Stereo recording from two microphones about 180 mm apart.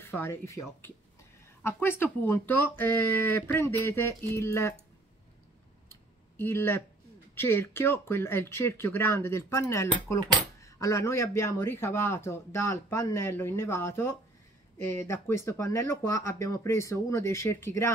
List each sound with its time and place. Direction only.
0.0 s speech: 15° left (ahead or behind)
6.3 s speech: 15° left (ahead or behind)